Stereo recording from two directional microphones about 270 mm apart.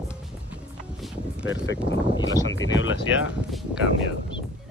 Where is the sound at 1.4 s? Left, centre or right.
Left.